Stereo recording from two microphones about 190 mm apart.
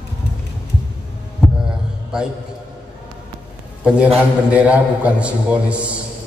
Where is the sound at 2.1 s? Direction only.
5° right (ahead or behind).